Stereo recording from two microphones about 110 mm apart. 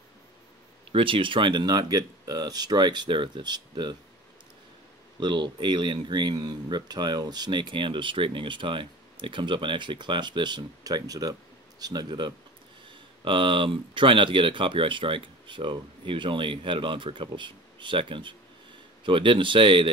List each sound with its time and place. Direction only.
0.9 s speech: 50° right (ahead or behind)
5.2 s speech: 45° right (ahead or behind)